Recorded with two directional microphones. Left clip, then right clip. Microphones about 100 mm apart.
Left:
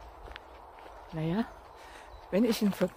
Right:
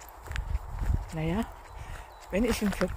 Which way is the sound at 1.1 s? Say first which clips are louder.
Right 1 dB; 30° left (ahead or behind).